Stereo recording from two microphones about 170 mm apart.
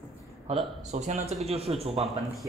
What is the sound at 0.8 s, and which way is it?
Speech, 45° right (ahead or behind).